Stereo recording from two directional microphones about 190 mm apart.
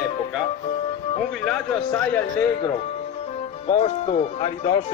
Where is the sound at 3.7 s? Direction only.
30° left (ahead or behind).